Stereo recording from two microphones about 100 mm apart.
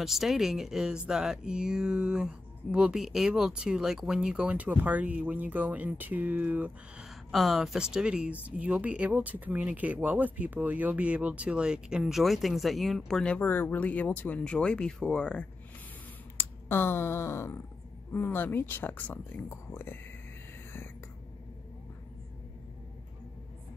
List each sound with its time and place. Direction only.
0.0 s speech: 5° right (ahead or behind)
7.1 s speech: centre (ahead or behind)
16.3 s speech: 25° left (ahead or behind)